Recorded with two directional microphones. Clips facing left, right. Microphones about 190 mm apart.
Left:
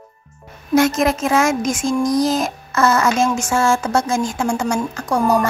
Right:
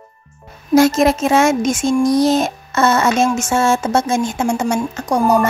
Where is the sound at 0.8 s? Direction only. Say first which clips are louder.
Right 4 dB; 25° right (ahead or behind).